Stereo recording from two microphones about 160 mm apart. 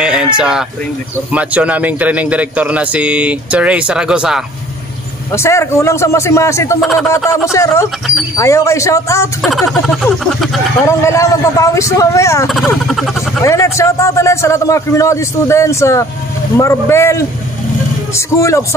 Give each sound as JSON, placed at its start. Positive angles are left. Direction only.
{"t": 0.0, "sound": "a sound", "side_deg": -5}
{"t": 0.4, "sound": "a man's voice", "side_deg": -5}
{"t": 5.3, "sound": "a man's voice", "side_deg": 15}
{"t": 6.8, "sound": "speech", "side_deg": 0}
{"t": 7.2, "sound": "a man's voice", "side_deg": 20}
{"t": 9.4, "sound": "speech", "side_deg": 0}
{"t": 10.9, "sound": "a man's voice", "side_deg": 20}
{"t": 12.4, "sound": "speech", "side_deg": 0}
{"t": 13.4, "sound": "a man's voice", "side_deg": 20}